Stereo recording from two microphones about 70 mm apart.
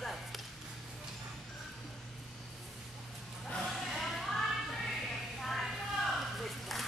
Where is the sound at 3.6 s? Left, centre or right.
Centre.